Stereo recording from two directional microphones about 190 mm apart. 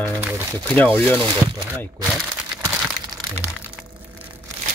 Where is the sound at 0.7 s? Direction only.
10° left (ahead or behind).